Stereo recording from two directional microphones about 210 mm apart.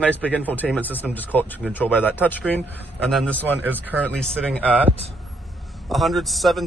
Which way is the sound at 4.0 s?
5° left (ahead or behind).